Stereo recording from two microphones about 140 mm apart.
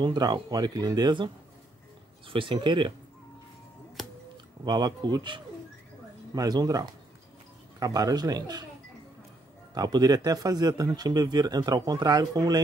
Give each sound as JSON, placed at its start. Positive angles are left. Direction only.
{"t": 0.0, "sound": "speech", "side_deg": -30}
{"t": 4.6, "sound": "speech", "side_deg": -30}
{"t": 9.8, "sound": "speech", "side_deg": -30}